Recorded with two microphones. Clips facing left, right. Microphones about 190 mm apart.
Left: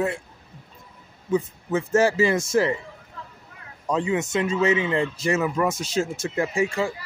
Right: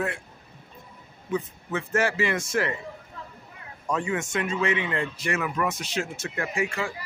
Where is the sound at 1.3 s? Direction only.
25° left (ahead or behind).